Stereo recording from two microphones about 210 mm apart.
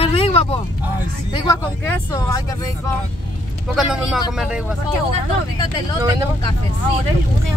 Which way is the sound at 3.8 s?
Centre (ahead or behind).